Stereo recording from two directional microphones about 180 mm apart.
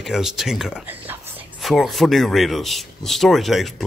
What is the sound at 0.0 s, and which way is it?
Speech, centre (ahead or behind).